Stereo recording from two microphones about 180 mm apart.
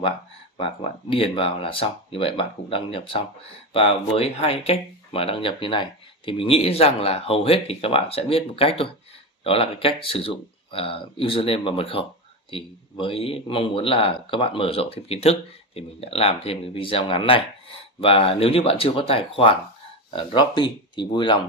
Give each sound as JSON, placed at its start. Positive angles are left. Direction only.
{"t": 1.1, "sound": "speech", "side_deg": 30}